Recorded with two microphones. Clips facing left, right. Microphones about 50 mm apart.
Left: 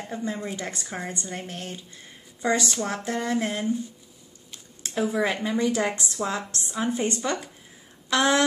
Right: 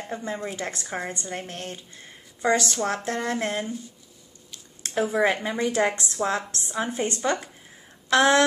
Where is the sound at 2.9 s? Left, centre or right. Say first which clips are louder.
Even; centre.